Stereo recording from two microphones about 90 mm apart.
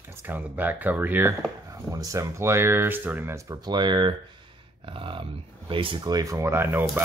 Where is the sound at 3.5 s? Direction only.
55° right (ahead or behind).